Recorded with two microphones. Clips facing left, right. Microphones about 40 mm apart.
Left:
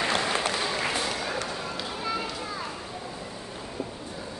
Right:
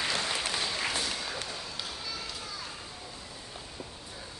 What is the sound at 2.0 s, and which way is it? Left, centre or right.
Children playing, left.